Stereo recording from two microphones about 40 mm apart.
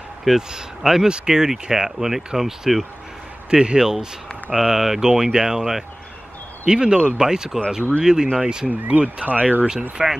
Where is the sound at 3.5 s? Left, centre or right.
Right.